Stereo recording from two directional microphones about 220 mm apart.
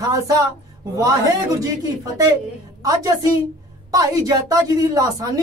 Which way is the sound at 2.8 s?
15° right (ahead or behind).